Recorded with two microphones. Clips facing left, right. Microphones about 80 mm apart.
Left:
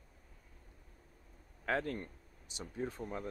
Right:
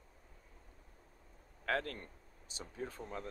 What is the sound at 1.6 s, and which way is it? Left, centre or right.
Speech, centre.